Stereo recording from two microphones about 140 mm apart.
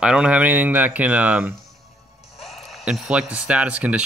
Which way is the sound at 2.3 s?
Centre (ahead or behind).